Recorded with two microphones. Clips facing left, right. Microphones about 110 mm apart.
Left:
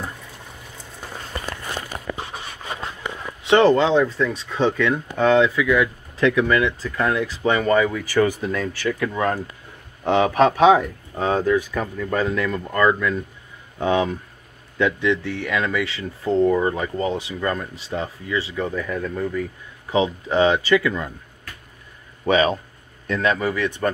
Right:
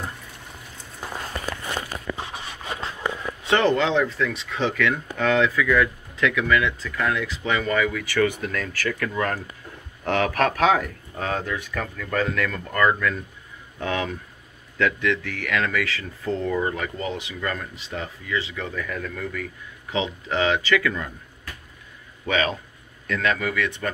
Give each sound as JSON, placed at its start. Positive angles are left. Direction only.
{"t": 3.4, "sound": "speech", "side_deg": 30}
{"t": 5.6, "sound": "speech", "side_deg": 15}
{"t": 6.1, "sound": "speech", "side_deg": 30}
{"t": 8.8, "sound": "speech", "side_deg": 20}
{"t": 11.7, "sound": "speech", "side_deg": 20}
{"t": 22.2, "sound": "speech", "side_deg": 35}